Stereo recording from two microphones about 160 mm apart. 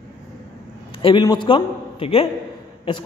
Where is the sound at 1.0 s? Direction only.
30° left (ahead or behind).